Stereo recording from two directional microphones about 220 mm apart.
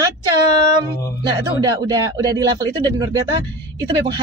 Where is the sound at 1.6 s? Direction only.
15° right (ahead or behind).